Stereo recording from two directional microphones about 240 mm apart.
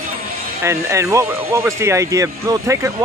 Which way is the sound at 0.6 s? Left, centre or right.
Centre.